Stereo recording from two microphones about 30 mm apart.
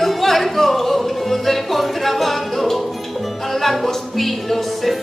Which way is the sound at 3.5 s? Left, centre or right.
Centre.